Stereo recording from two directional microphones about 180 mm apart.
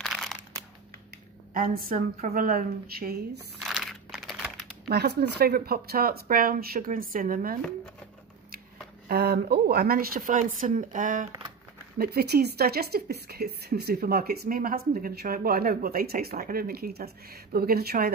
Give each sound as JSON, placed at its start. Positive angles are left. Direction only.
{"t": 0.0, "sound": "crumpling", "side_deg": 0}
{"t": 1.5, "sound": "speech", "side_deg": -50}
{"t": 3.6, "sound": "crumpling", "side_deg": 0}
{"t": 4.8, "sound": "speech", "side_deg": -65}
{"t": 9.0, "sound": "speech", "side_deg": -65}
{"t": 12.0, "sound": "speech", "side_deg": -60}